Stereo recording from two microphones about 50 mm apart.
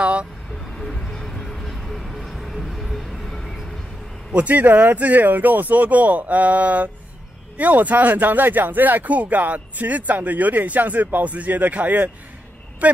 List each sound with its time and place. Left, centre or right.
0.0 s vehicle: right
0.7 s music: centre
4.3 s speech: right